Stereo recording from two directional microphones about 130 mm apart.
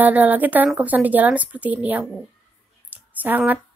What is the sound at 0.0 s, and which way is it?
Speech, 15° right (ahead or behind).